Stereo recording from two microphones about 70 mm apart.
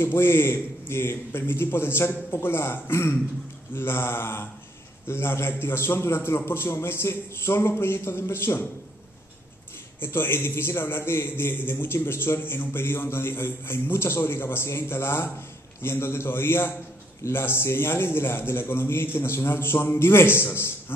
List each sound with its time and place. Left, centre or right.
0.0 s a man's voice: left
9.9 s a man's voice: left